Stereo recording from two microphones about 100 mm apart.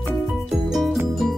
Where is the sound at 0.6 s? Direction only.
5° right (ahead or behind).